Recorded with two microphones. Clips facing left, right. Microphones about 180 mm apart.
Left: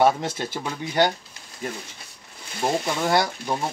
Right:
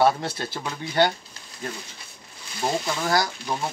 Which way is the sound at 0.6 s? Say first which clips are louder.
Even; 10° left (ahead or behind).